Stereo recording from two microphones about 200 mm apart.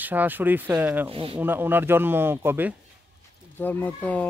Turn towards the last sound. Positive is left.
turn(degrees=10)  # may be behind; listen again after turning